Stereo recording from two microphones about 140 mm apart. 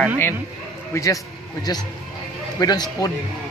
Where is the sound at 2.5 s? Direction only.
30° left (ahead or behind).